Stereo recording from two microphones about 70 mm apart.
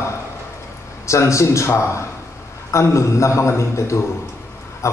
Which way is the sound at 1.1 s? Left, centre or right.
Left.